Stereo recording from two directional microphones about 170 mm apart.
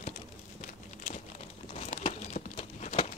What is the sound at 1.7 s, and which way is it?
Crumpling, 40° left (ahead or behind).